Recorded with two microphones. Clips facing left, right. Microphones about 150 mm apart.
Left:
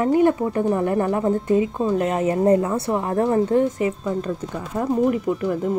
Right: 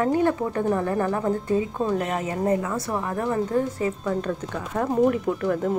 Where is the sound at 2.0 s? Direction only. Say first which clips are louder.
Left 6 dB; 30° left (ahead or behind).